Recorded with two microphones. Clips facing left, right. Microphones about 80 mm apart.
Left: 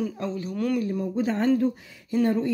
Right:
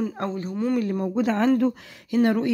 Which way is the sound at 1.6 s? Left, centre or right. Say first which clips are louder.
Right 2 dB; right.